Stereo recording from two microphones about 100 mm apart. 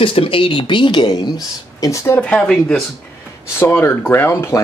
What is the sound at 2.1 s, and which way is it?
Speech, 15° left (ahead or behind).